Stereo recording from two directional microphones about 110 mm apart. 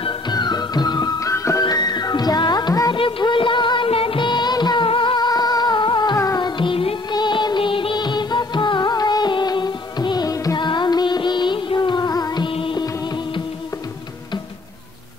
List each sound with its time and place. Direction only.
0.0 s music: 40° left (ahead or behind)
1.3 s music: 30° left (ahead or behind)
2.9 s music of bollywood: 50° left (ahead or behind)
6.1 s music: 35° left (ahead or behind); by 7.0 s 55° left (ahead or behind)
7.1 s music: 40° left (ahead or behind)
12.4 s music: 50° left (ahead or behind)
12.8 s music: 40° left (ahead or behind)